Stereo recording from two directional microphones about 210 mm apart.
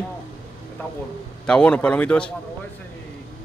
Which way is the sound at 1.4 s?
5° left (ahead or behind).